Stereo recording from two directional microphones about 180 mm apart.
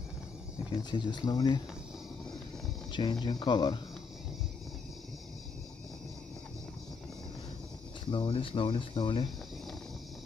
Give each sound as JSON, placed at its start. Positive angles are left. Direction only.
{"t": 0.8, "sound": "speech", "side_deg": 25}
{"t": 2.9, "sound": "speech", "side_deg": 25}
{"t": 8.1, "sound": "speech", "side_deg": 30}